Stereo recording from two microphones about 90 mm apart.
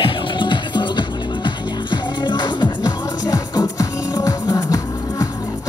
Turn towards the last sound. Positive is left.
turn(degrees=40)  # may be behind; listen again after turning